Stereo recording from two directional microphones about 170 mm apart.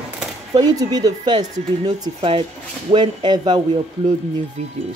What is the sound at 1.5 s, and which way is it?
Speech, 40° right (ahead or behind).